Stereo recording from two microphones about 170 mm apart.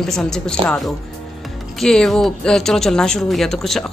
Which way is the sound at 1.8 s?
5° left (ahead or behind).